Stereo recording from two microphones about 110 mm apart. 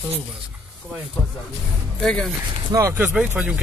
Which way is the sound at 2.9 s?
20° right (ahead or behind).